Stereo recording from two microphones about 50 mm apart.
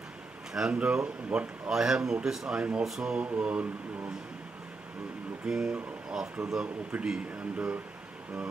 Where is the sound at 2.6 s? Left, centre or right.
Right.